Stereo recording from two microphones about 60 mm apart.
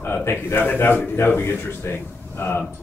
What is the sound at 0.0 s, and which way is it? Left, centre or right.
A man's voice, left.